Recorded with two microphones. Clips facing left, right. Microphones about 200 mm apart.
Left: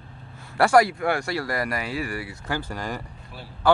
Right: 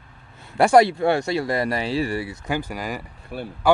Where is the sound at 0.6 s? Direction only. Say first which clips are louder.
Right 3 dB; 25° right (ahead or behind).